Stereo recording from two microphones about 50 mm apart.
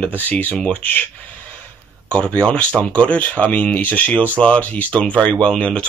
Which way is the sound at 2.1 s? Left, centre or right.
Left.